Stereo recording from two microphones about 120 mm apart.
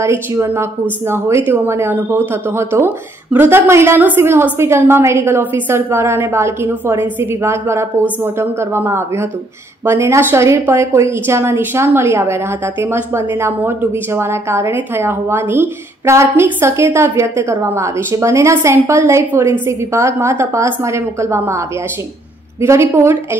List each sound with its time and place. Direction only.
0.0 s speech: 25° right (ahead or behind)